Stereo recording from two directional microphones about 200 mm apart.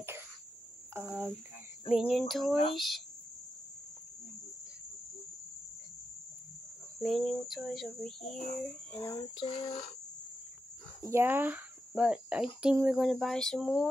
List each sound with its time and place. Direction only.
0.9 s cricket: 15° right (ahead or behind)
1.9 s speech: centre (ahead or behind)
7.0 s a child's voice: centre (ahead or behind)
9.4 s a sound: 35° left (ahead or behind)
11.1 s speech: 10° right (ahead or behind)